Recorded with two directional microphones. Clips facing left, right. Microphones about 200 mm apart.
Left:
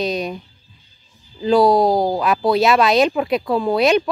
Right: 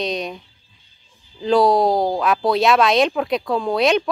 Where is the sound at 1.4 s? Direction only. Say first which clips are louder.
Left 2 dB; centre (ahead or behind).